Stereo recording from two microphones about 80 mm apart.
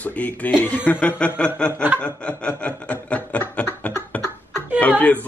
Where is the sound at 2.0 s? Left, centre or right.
Centre.